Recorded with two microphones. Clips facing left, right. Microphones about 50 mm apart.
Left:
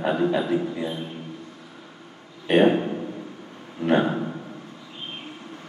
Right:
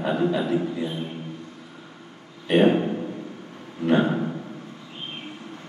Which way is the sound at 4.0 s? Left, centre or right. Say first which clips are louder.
Right 2 dB; centre.